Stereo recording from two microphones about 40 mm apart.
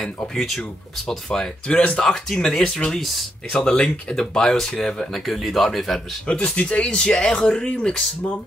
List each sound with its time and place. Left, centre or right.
0.4 s speech: centre
1.7 s speech: left
2.2 s speech: centre
3.0 s speech: centre
3.5 s speech: left
5.2 s speech: centre
6.2 s speech: left